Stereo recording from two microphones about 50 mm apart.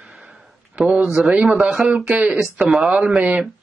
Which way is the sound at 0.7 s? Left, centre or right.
Right.